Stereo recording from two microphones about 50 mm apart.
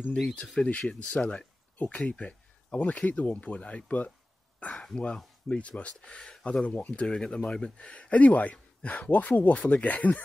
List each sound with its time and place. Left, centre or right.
0.2 s speech: centre; by 10.2 s left